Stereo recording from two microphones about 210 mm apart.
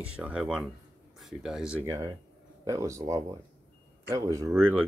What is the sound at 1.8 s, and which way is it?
Speech, 15° right (ahead or behind).